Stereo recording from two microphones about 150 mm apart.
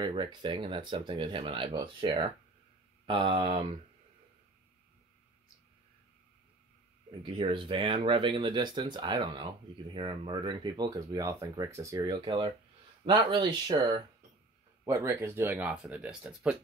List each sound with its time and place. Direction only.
0.0 s speech: 30° right (ahead or behind)
3.1 s speech: 35° right (ahead or behind)
7.2 s speech: 35° right (ahead or behind)
12.1 s speech: 35° right (ahead or behind); by 16.5 s 5° right (ahead or behind)